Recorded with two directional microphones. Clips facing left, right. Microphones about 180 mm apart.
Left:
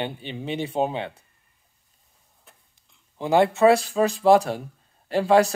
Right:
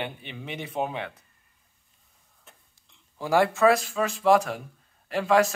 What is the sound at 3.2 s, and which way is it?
Speech, 20° left (ahead or behind).